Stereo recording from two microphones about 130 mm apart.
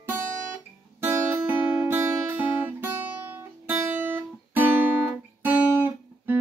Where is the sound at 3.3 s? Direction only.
15° right (ahead or behind).